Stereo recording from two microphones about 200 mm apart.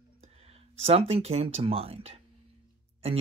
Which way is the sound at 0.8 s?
30° right (ahead or behind).